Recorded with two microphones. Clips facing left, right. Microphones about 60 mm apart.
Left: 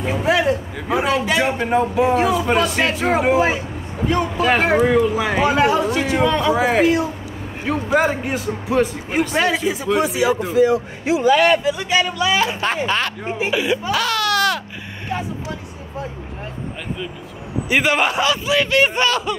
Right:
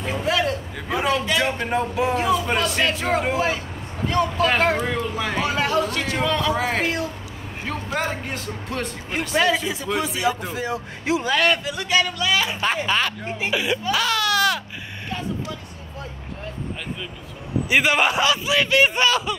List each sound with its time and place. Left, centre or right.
0.0 s speech: centre
1.7 s speech: centre
12.7 s speech: centre
13.2 s speech: centre
13.5 s speech: centre
15.0 s vehicle: left
17.6 s speech: centre